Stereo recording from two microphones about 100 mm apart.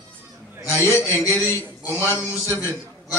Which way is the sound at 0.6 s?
25° left (ahead or behind).